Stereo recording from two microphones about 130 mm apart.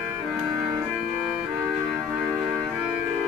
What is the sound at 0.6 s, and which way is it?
Organ, 20° right (ahead or behind).